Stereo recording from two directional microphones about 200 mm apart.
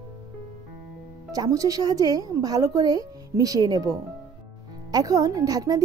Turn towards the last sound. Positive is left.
turn(degrees=-20)  # may be behind; listen again after turning